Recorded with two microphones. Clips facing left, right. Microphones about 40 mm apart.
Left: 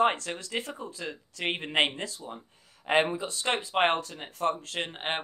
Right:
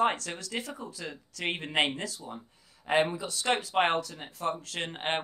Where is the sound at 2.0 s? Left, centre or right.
Left.